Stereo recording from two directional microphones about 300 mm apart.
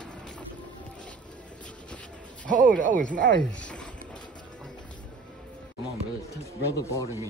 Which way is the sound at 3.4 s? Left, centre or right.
Centre.